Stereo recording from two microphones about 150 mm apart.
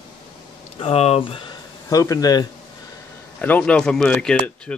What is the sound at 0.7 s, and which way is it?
Speech, 45° left (ahead or behind).